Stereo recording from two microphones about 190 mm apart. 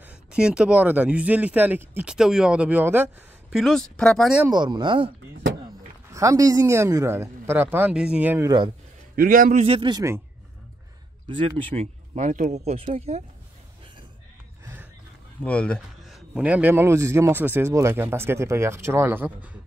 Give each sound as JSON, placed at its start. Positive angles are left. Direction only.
{"t": 0.0, "sound": "speech", "side_deg": -5}
{"t": 3.5, "sound": "speech", "side_deg": 0}
{"t": 4.5, "sound": "speech", "side_deg": -25}
{"t": 6.1, "sound": "speech", "side_deg": -15}
{"t": 9.1, "sound": "speech", "side_deg": -45}
{"t": 11.2, "sound": "speech", "side_deg": -25}
{"t": 15.4, "sound": "speech", "side_deg": 5}